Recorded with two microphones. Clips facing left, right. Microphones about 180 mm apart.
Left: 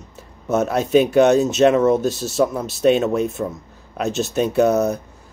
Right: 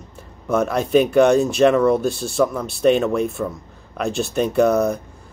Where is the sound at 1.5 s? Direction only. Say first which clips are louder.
Even; 20° left (ahead or behind).